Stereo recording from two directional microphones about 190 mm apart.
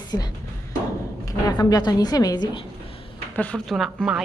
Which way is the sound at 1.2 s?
20° left (ahead or behind).